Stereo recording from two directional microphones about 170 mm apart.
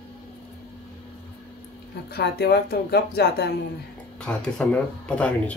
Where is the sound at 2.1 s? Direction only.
70° left (ahead or behind).